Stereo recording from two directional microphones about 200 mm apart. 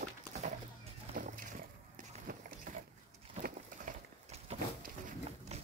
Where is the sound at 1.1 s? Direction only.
40° right (ahead or behind).